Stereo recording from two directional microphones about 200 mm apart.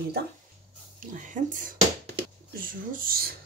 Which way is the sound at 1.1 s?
40° right (ahead or behind).